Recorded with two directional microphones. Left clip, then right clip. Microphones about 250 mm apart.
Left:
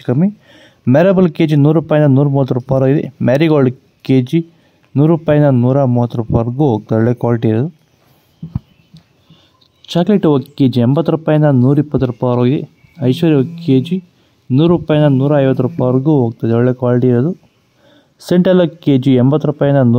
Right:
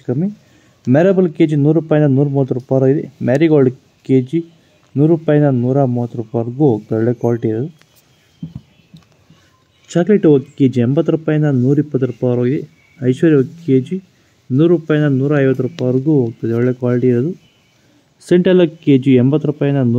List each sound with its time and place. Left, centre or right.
0.0 s speech: left
9.8 s speech: left